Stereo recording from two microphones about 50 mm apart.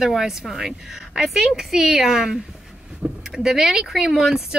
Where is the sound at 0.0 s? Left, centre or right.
Centre.